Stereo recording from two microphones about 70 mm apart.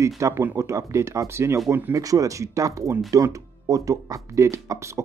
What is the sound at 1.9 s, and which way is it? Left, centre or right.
Speech, right.